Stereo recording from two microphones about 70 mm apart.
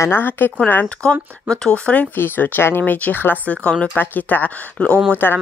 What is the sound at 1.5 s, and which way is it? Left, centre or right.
Speech, centre.